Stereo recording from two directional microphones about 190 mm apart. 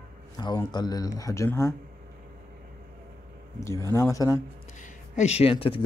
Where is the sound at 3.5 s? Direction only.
15° left (ahead or behind).